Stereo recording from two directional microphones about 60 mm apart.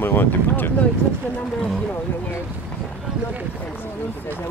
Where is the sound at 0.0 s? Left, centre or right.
Left.